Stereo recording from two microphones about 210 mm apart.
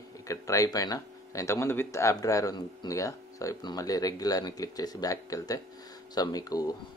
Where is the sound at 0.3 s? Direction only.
15° left (ahead or behind).